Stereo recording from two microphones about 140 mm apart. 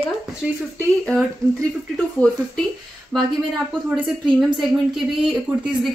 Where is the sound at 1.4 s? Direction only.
25° right (ahead or behind).